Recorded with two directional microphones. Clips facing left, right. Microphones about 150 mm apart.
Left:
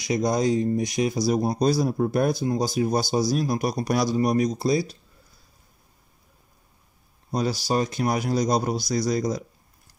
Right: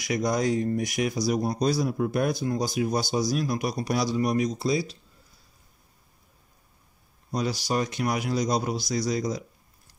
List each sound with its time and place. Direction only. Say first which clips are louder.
0.0 s a man's voice: left 3 dB; 25° left (ahead or behind); by 3.9 s 40° left (ahead or behind)
3.9 s a man's voice: left 3 dB; 50° left (ahead or behind)
4.2 s a man's voice: left 3 dB; 35° left (ahead or behind)
7.2 s a man's voice: left 3 dB; 30° left (ahead or behind)